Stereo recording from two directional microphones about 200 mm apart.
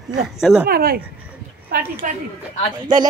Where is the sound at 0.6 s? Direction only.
50° right (ahead or behind).